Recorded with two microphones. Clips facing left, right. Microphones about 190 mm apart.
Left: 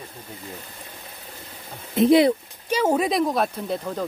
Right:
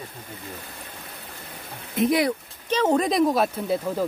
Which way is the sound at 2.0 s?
25° left (ahead or behind).